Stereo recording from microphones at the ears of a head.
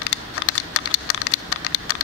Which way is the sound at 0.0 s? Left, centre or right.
Left.